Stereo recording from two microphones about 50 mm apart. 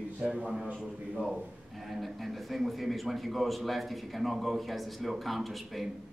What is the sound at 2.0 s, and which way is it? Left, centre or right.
A man's voice, centre.